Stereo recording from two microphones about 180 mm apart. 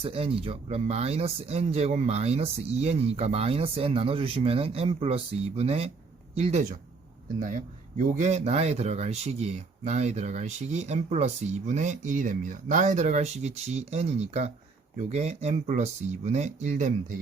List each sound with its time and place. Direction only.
0.0 s speech: 30° right (ahead or behind)